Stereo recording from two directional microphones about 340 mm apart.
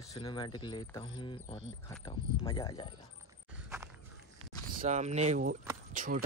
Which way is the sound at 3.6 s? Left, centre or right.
Centre.